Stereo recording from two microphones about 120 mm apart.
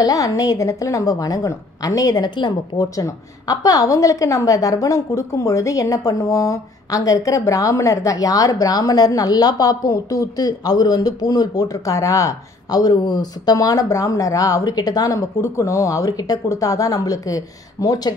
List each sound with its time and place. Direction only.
0.0 s a woman's voice: 30° left (ahead or behind)